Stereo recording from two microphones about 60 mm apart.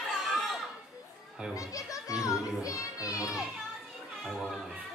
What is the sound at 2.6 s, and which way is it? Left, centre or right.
Music, left.